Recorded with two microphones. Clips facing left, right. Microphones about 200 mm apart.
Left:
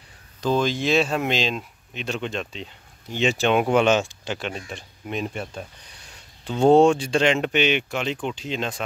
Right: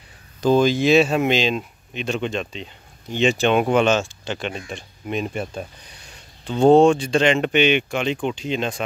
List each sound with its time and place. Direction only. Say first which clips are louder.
0.4 s speech: right 6 dB; 10° right (ahead or behind)
6.4 s speech: right 2 dB; 10° left (ahead or behind)